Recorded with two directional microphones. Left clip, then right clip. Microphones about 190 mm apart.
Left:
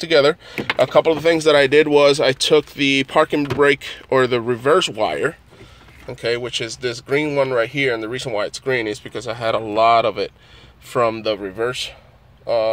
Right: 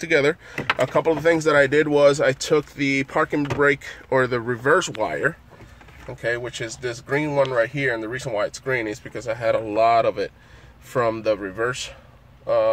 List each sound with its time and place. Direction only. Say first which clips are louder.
0.0 s speech: left 5 dB; 5° left (ahead or behind)
6.2 s speech: left 4 dB; 20° left (ahead or behind)